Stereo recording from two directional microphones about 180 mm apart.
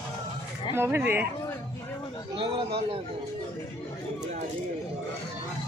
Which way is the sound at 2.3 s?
30° right (ahead or behind).